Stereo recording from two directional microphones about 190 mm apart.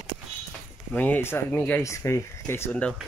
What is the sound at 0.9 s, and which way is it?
A woman's voice, 10° left (ahead or behind).